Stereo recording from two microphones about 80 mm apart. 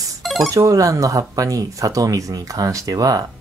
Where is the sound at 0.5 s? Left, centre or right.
Right.